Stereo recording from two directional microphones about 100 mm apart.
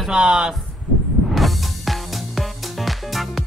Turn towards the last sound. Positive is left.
turn(degrees=0)  # may be behind; listen again after turning